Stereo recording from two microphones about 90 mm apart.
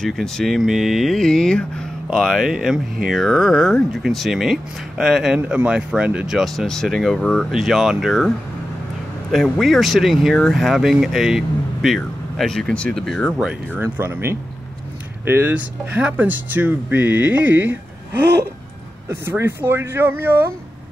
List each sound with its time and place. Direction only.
0.0 s speech: 5° left (ahead or behind); by 6.2 s 15° right (ahead or behind)
6.2 s speech: centre (ahead or behind)
9.3 s speech: centre (ahead or behind)
13.9 s speech: 30° right (ahead or behind)
19.0 s speech: 25° right (ahead or behind)